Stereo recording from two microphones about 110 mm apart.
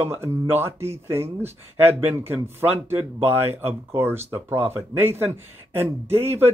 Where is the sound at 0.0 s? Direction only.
20° right (ahead or behind).